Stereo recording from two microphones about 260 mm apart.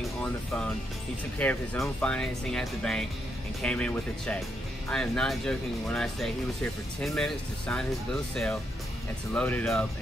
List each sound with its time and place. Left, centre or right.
1.4 s speech: centre